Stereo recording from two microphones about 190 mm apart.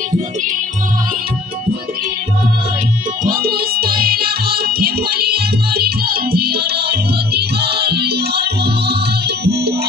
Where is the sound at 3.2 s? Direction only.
50° right (ahead or behind).